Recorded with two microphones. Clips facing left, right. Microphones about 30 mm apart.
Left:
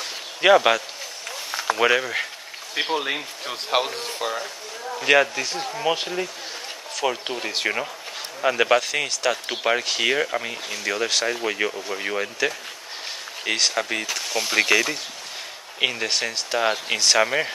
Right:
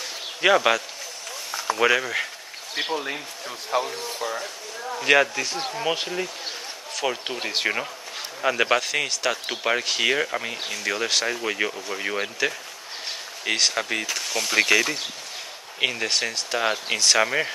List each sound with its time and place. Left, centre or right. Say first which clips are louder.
0.4 s speech: left 3 dB; centre
1.5 s a sound: left 2 dB; left
1.8 s speech: even; centre
2.8 s speech: left 3 dB; left
4.2 s speech: left 2 dB; left
4.9 s speech: left 1 dB; centre